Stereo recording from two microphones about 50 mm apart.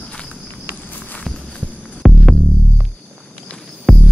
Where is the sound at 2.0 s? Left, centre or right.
Centre.